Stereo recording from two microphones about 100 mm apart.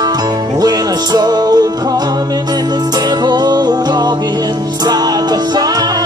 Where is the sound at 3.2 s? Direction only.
45° right (ahead or behind).